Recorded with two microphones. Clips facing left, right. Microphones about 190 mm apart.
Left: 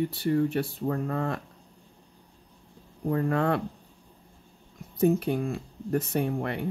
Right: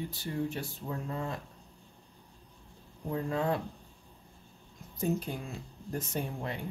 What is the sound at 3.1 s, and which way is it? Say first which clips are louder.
Speech: left 6 dB; 65° left (ahead or behind).